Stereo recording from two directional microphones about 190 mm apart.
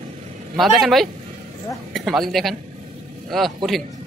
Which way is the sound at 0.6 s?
Centre (ahead or behind).